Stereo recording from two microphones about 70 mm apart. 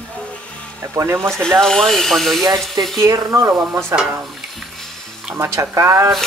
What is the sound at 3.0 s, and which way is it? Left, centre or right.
Speech, right.